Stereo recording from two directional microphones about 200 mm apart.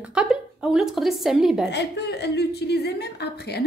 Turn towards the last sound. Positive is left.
turn(degrees=55)  # may be behind; listen again after turning